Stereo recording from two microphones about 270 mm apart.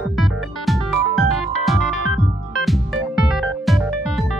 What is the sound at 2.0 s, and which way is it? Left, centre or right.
Music, left.